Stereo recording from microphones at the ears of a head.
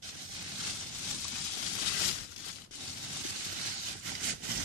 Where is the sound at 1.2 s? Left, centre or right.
Left.